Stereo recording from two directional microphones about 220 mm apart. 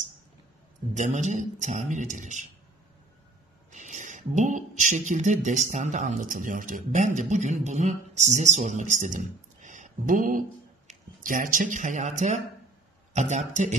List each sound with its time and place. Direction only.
0.9 s speech: 35° right (ahead or behind)
3.7 s speech: 35° right (ahead or behind)